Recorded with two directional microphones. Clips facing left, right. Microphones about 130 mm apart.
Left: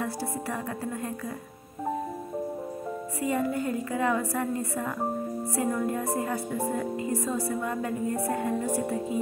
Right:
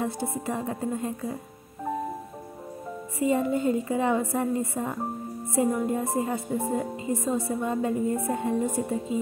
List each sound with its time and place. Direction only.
0.0 s speech: 20° right (ahead or behind)
3.2 s speech: 25° right (ahead or behind)